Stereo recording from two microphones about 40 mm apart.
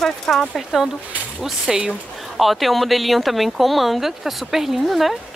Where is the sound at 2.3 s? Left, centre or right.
Centre.